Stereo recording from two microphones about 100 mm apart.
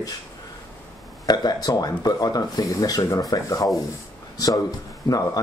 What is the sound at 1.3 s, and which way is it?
A man's voice, 40° left (ahead or behind).